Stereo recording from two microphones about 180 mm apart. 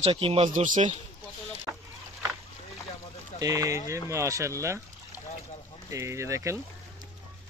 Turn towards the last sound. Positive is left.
turn(degrees=-15)  # may be behind; listen again after turning